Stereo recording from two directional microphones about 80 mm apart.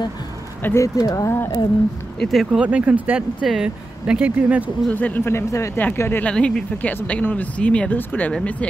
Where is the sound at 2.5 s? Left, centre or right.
Centre.